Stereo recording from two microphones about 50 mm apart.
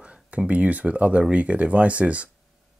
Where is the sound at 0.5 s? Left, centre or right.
Right.